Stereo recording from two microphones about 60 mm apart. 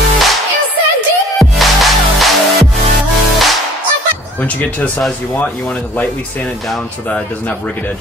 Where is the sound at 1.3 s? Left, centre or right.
Centre.